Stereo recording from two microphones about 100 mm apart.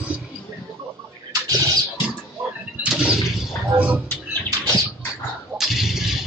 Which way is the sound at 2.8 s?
5° right (ahead or behind).